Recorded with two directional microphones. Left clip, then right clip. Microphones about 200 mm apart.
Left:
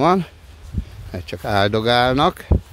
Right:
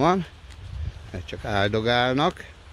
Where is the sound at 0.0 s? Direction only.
30° left (ahead or behind).